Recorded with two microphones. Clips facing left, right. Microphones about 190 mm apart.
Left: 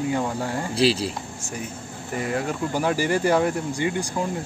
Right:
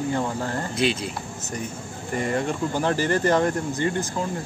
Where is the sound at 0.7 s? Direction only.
35° left (ahead or behind).